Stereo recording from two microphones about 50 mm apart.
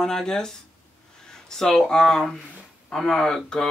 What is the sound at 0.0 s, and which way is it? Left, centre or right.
Speech, centre.